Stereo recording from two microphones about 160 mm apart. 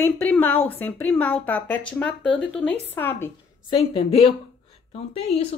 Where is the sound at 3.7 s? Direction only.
35° left (ahead or behind).